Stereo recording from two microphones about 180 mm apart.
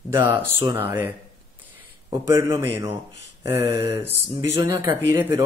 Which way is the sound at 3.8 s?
15° right (ahead or behind).